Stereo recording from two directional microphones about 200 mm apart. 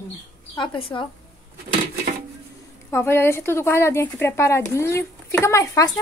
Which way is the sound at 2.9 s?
10° left (ahead or behind).